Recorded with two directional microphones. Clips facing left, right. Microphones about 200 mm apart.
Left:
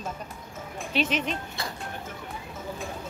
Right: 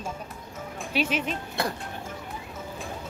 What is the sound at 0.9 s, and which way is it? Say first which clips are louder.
Speech: even; 10° right (ahead or behind).